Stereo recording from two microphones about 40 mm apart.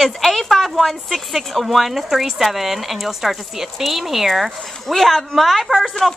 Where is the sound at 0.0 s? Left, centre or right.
Centre.